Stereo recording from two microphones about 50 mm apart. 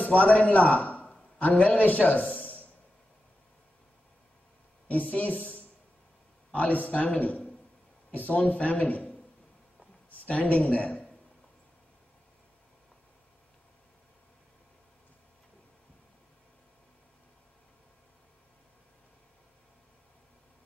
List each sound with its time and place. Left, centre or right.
0.0 s a man's voice: left
4.8 s a man's voice: left